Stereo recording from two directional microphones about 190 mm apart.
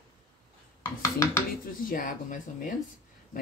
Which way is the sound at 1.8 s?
45° left (ahead or behind).